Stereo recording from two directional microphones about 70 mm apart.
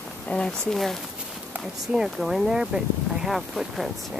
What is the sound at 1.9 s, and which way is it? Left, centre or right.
Speech, centre.